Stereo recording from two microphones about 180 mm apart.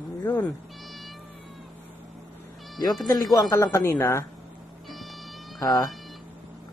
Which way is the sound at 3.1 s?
15° left (ahead or behind).